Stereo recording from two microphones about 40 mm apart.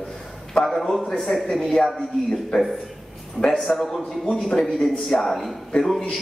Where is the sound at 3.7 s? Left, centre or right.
Centre.